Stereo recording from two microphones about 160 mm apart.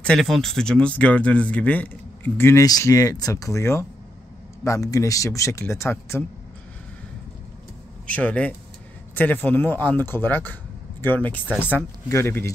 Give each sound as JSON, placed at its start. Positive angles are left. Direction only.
{"t": 0.0, "sound": "speech", "side_deg": 5}
{"t": 8.1, "sound": "speech", "side_deg": 10}